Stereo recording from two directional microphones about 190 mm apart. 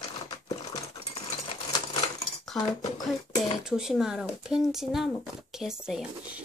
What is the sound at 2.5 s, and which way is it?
Speech, 20° left (ahead or behind).